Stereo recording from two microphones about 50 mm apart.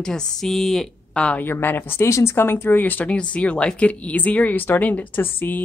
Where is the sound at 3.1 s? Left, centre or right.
Left.